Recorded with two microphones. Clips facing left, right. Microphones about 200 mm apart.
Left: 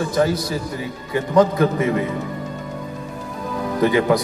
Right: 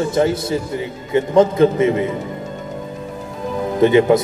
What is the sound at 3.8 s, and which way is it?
Speech, 25° right (ahead or behind).